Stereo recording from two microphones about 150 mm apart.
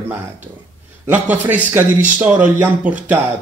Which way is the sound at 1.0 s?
10° right (ahead or behind).